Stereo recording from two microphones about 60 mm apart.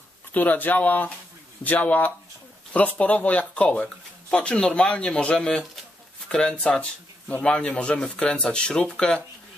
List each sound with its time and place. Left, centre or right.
0.3 s speech: left; by 9.2 s centre